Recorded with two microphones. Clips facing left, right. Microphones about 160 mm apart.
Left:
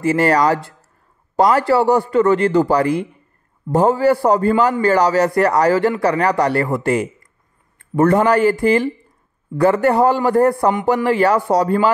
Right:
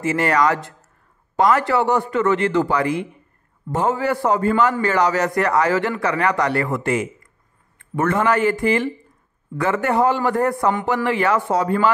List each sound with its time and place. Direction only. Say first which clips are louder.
0.0 s a man's voice: left 3 dB; 35° left (ahead or behind)